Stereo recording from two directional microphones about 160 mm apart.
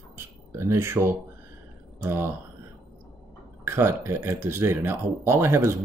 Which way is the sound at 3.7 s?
15° right (ahead or behind).